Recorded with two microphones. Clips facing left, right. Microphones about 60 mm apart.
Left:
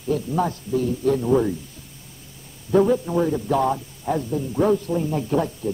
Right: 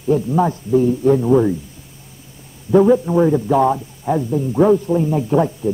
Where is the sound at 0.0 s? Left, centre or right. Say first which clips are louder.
Right 6 dB; centre.